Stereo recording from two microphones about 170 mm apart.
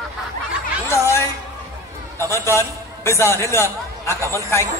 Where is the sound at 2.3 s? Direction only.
15° left (ahead or behind).